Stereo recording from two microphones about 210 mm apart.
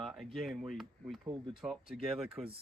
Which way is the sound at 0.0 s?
Centre (ahead or behind).